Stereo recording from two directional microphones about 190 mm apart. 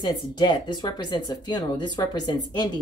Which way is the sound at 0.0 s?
25° left (ahead or behind).